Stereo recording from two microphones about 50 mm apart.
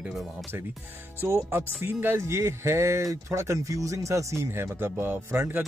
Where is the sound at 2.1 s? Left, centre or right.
Right.